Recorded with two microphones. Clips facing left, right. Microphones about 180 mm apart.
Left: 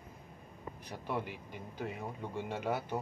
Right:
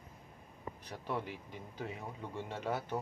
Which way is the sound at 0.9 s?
5° left (ahead or behind).